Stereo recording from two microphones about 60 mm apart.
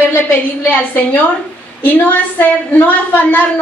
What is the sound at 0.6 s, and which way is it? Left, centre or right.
A woman's voice, left.